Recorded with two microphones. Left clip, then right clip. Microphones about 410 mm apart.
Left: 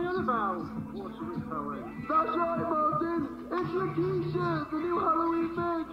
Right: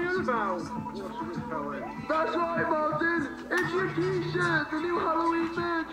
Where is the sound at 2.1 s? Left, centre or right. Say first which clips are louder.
Even; centre.